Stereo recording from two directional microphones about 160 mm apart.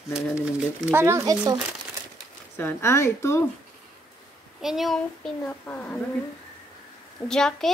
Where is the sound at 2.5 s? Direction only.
15° left (ahead or behind).